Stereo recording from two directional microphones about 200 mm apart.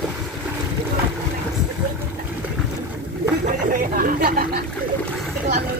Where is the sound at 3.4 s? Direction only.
45° right (ahead or behind).